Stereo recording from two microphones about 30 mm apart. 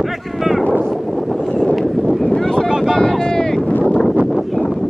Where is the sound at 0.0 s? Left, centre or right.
Centre.